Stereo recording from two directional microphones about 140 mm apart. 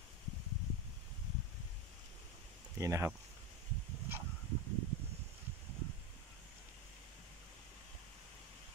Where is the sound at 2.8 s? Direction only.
20° right (ahead or behind).